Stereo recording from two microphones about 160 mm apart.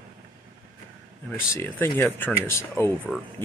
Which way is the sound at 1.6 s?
15° left (ahead or behind).